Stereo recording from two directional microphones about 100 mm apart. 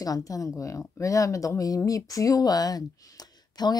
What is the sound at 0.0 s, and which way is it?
Speech, 35° left (ahead or behind).